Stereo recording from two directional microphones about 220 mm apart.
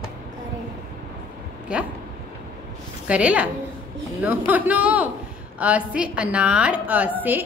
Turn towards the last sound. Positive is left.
turn(degrees=-10)  # may be behind; listen again after turning